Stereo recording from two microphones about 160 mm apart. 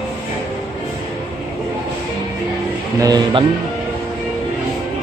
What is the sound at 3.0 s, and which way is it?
Speech, 25° right (ahead or behind).